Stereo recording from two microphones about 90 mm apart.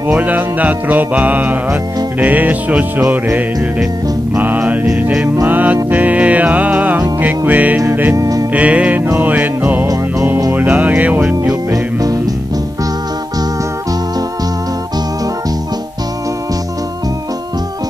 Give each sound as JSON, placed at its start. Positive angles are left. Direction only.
{"t": 0.1, "sound": "music", "side_deg": -20}
{"t": 4.4, "sound": "music", "side_deg": -20}
{"t": 8.2, "sound": "music", "side_deg": -40}
{"t": 8.5, "sound": "music", "side_deg": -15}
{"t": 11.7, "sound": "music", "side_deg": -45}